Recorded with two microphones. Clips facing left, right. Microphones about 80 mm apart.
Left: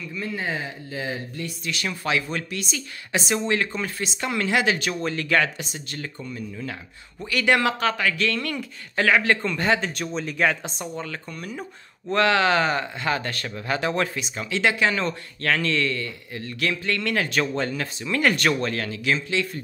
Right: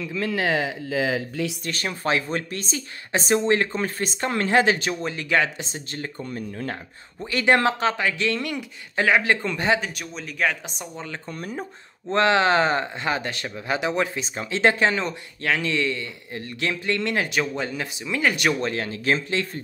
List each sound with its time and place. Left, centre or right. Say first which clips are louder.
0.0 s speech: right 5 dB; right
1.6 s speech: right 1 dB; right
6.3 s speech: right 3 dB; right
7.2 s speech: right 1 dB; right
10.1 s speech: left 2 dB; centre
10.8 s speech: left 3 dB; centre
11.2 s speech: right 2 dB; right; by 14.2 s centre
14.2 s speech: right 3 dB; right
15.0 s speech: left 1 dB; centre; by 19.6 s right